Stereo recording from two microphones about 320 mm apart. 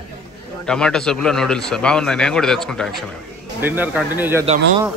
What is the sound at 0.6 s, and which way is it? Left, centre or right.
A man's voice, centre.